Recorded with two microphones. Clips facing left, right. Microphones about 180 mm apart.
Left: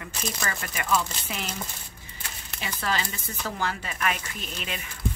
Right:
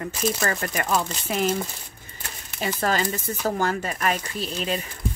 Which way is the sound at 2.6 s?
45° right (ahead or behind).